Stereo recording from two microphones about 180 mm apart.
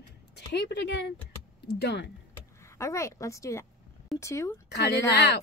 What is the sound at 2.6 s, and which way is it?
A woman's voice, 15° left (ahead or behind).